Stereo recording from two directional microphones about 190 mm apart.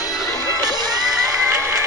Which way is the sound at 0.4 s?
20° right (ahead or behind).